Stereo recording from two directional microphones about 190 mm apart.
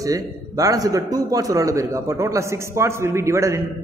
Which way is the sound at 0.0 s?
20° right (ahead or behind).